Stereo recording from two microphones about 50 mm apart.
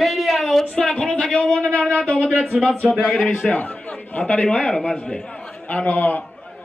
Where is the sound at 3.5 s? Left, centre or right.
Left.